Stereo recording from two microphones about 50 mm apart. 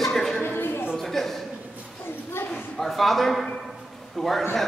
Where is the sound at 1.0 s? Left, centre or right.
Centre.